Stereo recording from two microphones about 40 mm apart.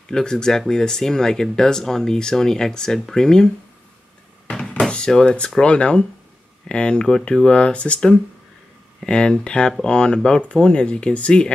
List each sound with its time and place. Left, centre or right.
0.1 s speech: centre
4.7 s a sound: centre
5.6 s speech: left